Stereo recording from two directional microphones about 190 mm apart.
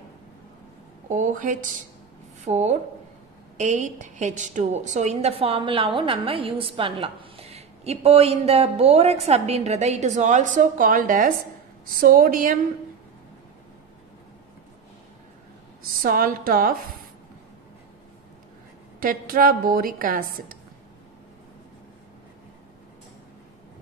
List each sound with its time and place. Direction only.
1.0 s a woman's voice: 40° right (ahead or behind)
15.8 s a woman's voice: 50° right (ahead or behind)
18.9 s a woman's voice: 50° right (ahead or behind)